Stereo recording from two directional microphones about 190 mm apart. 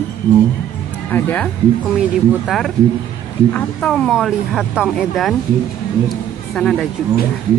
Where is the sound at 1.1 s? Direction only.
10° left (ahead or behind).